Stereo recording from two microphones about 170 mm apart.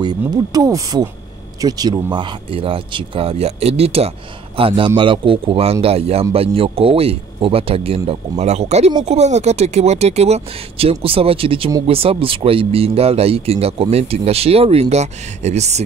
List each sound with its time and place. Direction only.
0.0 s speech: 25° right (ahead or behind); by 15.8 s 40° right (ahead or behind)